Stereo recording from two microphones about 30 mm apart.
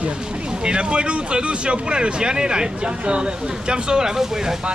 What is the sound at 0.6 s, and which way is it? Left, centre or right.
Speech, right.